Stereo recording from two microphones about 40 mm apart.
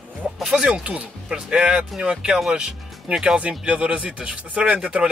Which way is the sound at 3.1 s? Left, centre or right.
Right.